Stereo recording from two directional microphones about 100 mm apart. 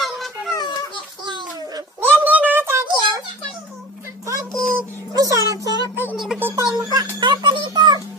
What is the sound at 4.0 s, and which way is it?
Child singing, 30° right (ahead or behind).